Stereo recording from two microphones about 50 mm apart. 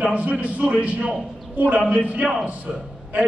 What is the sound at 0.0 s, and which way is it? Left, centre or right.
A man's voice, right.